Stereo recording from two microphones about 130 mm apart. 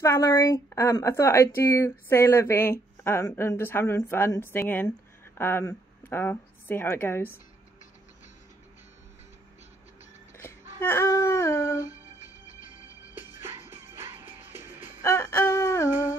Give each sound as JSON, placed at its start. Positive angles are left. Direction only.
{"t": 0.0, "sound": "a woman's voice", "side_deg": 20}
{"t": 10.8, "sound": "a woman's voice", "side_deg": 20}
{"t": 13.9, "sound": "music", "side_deg": -15}
{"t": 15.0, "sound": "a woman's voice", "side_deg": 20}